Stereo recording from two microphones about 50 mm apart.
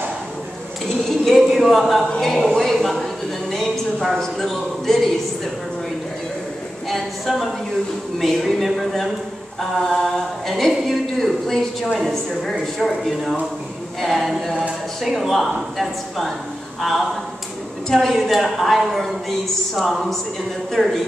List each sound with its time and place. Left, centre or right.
1.0 s a man's voice: centre
2.1 s speech: centre
6.9 s a woman's voice: centre
20.8 s speech: centre